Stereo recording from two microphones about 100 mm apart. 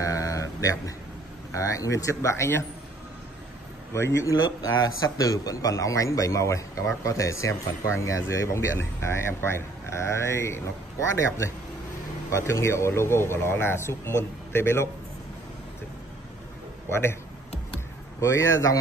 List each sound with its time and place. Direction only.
0.0 s a sound: 35° left (ahead or behind)
1.5 s speech: 35° left (ahead or behind)
3.9 s speech: 30° left (ahead or behind)
16.9 s speech: 25° left (ahead or behind)
18.2 s speech: 30° left (ahead or behind)